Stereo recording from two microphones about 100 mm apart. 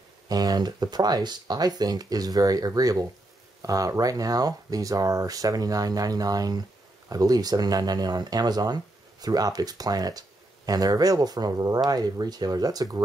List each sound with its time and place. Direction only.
0.3 s speech: 40° right (ahead or behind)